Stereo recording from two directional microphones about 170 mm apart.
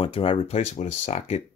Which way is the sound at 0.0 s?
30° left (ahead or behind).